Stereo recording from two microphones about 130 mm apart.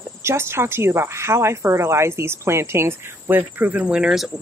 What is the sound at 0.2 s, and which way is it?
Speech, 20° right (ahead or behind).